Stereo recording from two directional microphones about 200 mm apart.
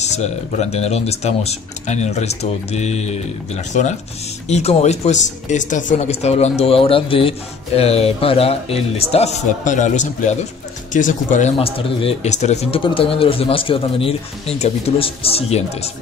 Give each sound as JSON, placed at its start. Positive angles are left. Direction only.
{"t": 0.0, "sound": "speech", "side_deg": 35}